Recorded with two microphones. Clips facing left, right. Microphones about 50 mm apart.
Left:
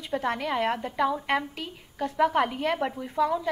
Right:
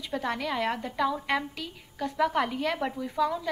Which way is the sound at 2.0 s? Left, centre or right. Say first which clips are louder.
Left 3 dB; centre.